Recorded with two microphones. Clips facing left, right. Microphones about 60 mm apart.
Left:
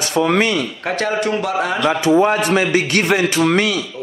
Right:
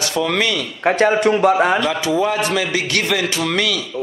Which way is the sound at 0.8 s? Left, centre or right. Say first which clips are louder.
Right 8 dB; right.